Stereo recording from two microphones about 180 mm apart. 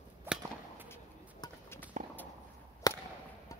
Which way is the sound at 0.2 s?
10° right (ahead or behind).